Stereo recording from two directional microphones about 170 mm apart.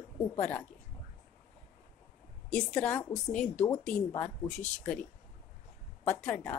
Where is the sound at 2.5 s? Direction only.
5° left (ahead or behind).